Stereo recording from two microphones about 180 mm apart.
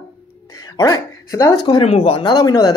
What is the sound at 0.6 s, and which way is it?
Speech, 20° left (ahead or behind).